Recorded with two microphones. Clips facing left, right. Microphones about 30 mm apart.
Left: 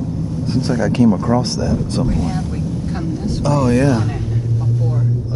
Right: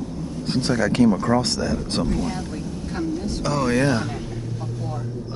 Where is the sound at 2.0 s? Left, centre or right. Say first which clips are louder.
Left 5 dB; centre.